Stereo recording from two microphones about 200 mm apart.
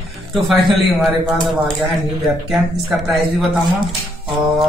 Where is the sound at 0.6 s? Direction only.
Centre (ahead or behind).